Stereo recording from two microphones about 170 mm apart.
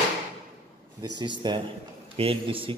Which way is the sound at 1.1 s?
25° right (ahead or behind).